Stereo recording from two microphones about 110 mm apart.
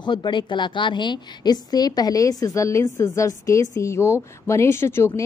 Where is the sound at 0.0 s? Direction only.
45° left (ahead or behind).